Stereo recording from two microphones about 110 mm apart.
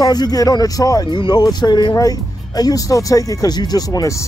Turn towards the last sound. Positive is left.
turn(degrees=30)  # may be behind; listen again after turning